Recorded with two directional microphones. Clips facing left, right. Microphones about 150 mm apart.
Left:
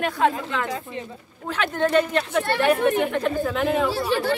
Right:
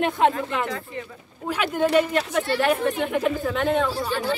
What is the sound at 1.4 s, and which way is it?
Speech, 10° right (ahead or behind).